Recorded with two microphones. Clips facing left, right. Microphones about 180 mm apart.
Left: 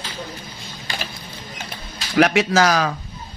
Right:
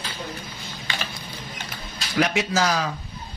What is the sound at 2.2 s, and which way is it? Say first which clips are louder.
Speech: left 6 dB; 75° left (ahead or behind).